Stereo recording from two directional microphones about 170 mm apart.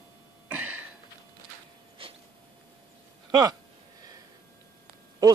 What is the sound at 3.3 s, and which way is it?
Speech, 25° right (ahead or behind).